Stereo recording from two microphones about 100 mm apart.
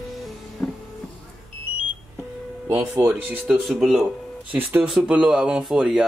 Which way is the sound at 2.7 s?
20° right (ahead or behind).